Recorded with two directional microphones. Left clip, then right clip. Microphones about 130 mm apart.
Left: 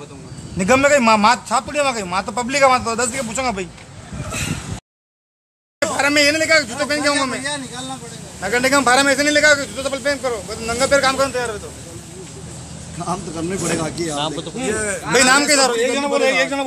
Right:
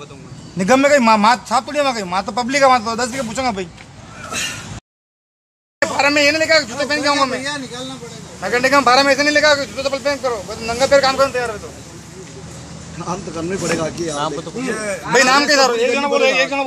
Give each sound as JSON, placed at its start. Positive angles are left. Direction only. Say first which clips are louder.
{"t": 0.6, "sound": "a man's voice", "louder": "right 1 dB", "side_deg": -15}
{"t": 3.1, "sound": "a man's voice", "louder": "right 1 dB", "side_deg": -5}
{"t": 5.8, "sound": "a man's voice", "louder": "right 1 dB", "side_deg": 15}
{"t": 13.0, "sound": "a man's voice", "louder": "even", "side_deg": 10}
{"t": 15.1, "sound": "a man's voice", "louder": "right 2 dB", "side_deg": 15}